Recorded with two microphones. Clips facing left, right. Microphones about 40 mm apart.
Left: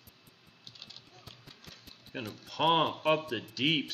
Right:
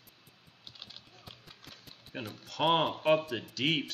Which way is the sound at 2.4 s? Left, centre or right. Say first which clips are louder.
Left 1 dB; centre.